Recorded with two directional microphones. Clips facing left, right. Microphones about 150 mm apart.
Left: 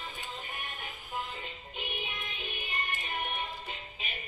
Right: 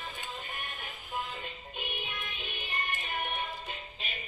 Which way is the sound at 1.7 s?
20° left (ahead or behind).